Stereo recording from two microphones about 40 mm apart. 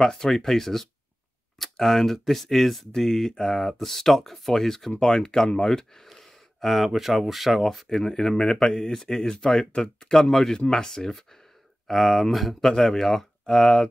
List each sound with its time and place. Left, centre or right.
0.0 s speech: centre
7.6 s speech: centre